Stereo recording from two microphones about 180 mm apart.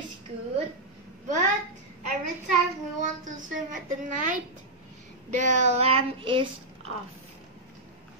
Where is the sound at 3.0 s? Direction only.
45° right (ahead or behind).